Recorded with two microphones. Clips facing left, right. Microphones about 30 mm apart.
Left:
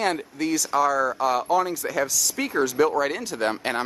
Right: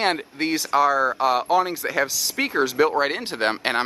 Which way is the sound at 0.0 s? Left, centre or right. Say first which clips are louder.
Right 2 dB; right.